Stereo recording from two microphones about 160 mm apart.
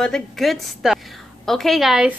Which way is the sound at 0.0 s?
Centre (ahead or behind).